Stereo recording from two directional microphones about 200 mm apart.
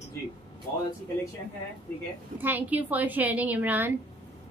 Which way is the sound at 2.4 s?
10° right (ahead or behind).